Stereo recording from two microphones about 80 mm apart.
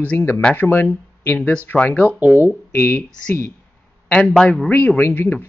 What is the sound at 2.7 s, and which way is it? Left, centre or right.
Speech, left.